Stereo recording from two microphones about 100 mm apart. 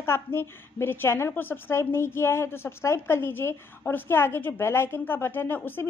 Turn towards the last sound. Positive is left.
turn(degrees=20)  # may be behind; listen again after turning